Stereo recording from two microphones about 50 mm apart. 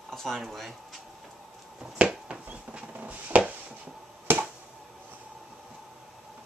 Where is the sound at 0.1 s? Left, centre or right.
Centre.